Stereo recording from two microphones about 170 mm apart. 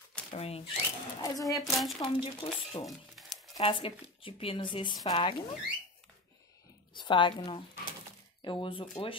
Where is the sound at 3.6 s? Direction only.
30° left (ahead or behind).